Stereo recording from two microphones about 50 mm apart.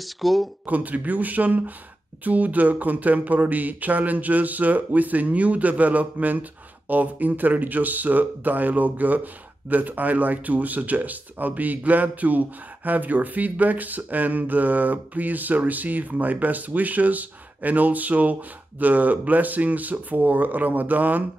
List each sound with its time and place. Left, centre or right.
0.0 s speech: centre
0.7 s speech: right